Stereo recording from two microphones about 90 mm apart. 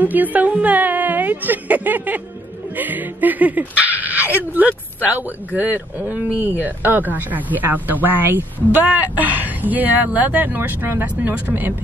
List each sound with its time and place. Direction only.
0.0 s speech: 20° right (ahead or behind)